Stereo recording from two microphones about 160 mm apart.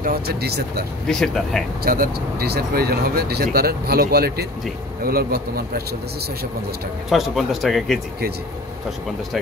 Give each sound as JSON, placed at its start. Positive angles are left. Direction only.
{"t": 0.0, "sound": "speech", "side_deg": -75}
{"t": 1.0, "sound": "speech", "side_deg": 5}
{"t": 1.9, "sound": "speech", "side_deg": -70}
{"t": 7.1, "sound": "speech", "side_deg": 0}